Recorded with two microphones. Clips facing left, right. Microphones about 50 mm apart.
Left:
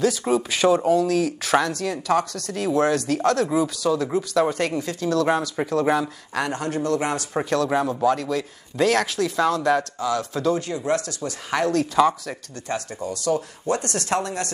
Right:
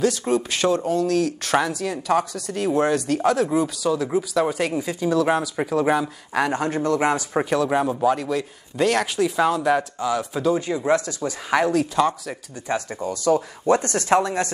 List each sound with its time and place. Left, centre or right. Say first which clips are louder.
0.0 s speech: even; centre
11.7 s speech: left 1 dB; centre
12.6 s speech: right 3 dB; centre